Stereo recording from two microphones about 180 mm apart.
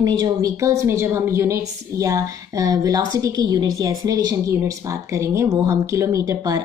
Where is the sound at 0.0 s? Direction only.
20° right (ahead or behind).